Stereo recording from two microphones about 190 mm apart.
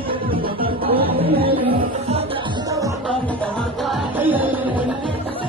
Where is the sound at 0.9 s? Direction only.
30° right (ahead or behind).